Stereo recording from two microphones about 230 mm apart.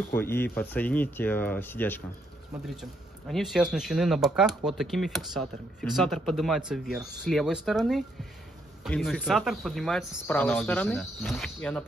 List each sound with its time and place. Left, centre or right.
0.1 s speech: centre